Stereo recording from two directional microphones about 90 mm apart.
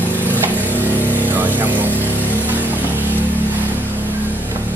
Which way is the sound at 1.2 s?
20° right (ahead or behind).